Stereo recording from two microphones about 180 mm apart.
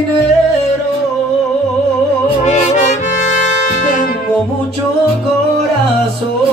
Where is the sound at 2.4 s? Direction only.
40° left (ahead or behind).